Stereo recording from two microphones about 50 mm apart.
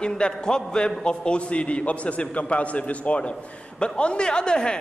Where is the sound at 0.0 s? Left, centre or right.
Centre.